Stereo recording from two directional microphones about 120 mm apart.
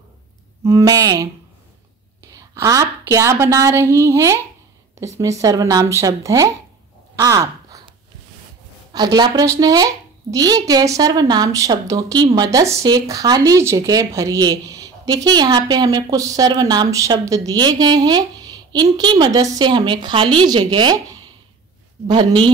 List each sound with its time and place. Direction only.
0.7 s a woman's voice: 30° right (ahead or behind)
2.3 s a woman's voice: 30° right (ahead or behind)
7.2 s crow: 30° right (ahead or behind)
8.9 s a man's voice: 35° right (ahead or behind)